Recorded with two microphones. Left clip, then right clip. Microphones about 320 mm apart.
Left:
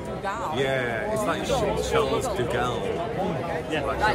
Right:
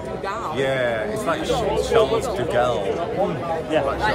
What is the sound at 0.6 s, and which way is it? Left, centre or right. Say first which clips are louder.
Speech: right 6 dB; centre.